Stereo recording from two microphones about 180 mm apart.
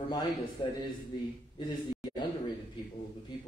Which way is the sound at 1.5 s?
25° left (ahead or behind).